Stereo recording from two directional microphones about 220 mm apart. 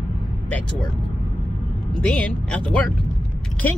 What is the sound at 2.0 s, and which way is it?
Speech, 5° left (ahead or behind).